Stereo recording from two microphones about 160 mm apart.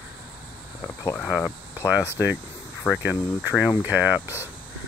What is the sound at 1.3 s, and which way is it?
Speech, 5° right (ahead or behind).